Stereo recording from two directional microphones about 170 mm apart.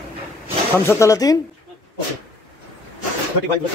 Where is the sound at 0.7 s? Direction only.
15° left (ahead or behind).